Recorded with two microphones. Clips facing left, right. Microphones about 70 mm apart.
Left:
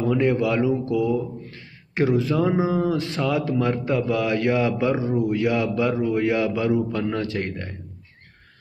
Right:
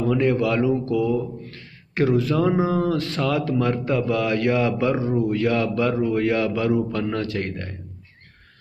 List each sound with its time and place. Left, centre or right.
0.1 s a man's voice: left